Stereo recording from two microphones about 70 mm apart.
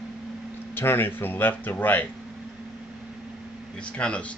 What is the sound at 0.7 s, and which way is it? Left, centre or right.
Speech, left.